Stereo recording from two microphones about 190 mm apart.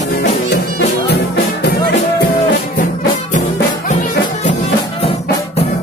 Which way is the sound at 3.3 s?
40° left (ahead or behind).